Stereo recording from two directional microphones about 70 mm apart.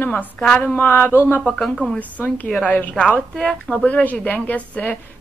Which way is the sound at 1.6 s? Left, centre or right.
Centre.